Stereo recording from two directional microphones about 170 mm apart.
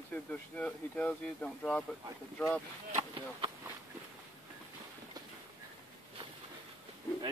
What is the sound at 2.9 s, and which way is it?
Speech, 30° right (ahead or behind).